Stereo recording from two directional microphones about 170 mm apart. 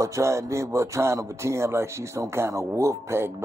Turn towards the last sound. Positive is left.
turn(degrees=-15)  # may be behind; listen again after turning